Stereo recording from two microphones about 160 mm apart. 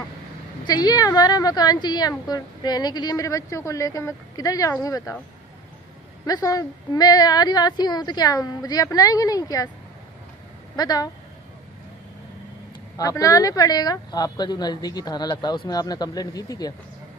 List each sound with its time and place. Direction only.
0.7 s a woman's voice: 25° left (ahead or behind)
6.2 s a woman's voice: 20° left (ahead or behind)
10.8 s a woman's voice: 25° left (ahead or behind)
12.9 s a woman's voice: 20° left (ahead or behind)